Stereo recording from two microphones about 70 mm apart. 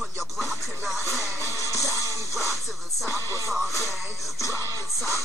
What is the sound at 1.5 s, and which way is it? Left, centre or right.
Music, left.